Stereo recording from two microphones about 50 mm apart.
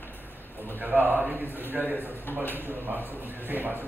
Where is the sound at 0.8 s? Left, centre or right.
Right.